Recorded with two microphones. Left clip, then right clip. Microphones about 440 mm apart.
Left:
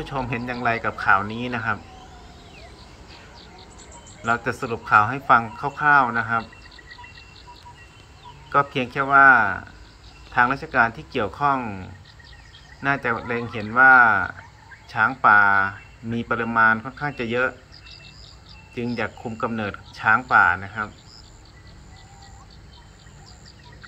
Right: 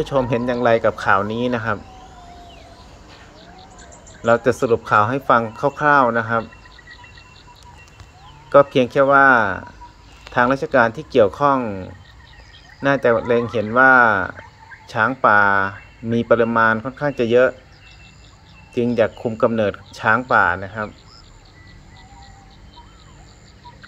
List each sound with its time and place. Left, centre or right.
0.0 s speech: centre
4.2 s speech: centre
8.5 s speech: centre
18.8 s speech: centre